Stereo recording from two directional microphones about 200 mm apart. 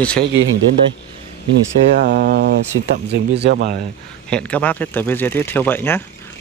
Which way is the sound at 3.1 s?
60° right (ahead or behind).